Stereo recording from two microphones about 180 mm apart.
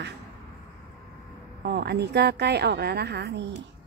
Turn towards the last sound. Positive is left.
turn(degrees=-65)  # may be behind; listen again after turning